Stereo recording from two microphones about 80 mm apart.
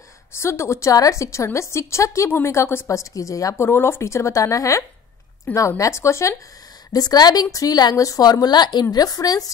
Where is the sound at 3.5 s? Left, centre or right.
Left.